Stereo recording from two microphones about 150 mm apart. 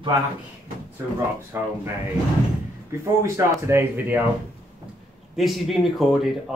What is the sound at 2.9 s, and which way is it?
Speech, 20° right (ahead or behind).